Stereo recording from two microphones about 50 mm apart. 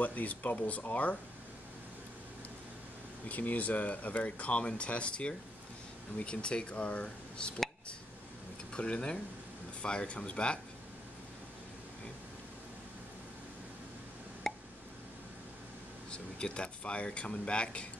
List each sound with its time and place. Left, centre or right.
0.0 s speech: left
3.3 s speech: left
8.7 s speech: left
14.5 s a sound: centre
16.1 s speech: centre